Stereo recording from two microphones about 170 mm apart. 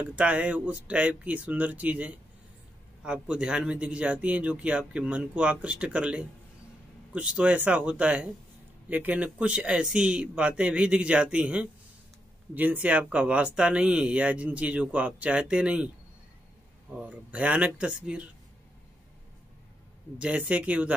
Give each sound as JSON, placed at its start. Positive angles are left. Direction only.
{"t": 0.0, "sound": "speech", "side_deg": -5}
{"t": 17.0, "sound": "speech", "side_deg": -5}
{"t": 20.2, "sound": "speech", "side_deg": -5}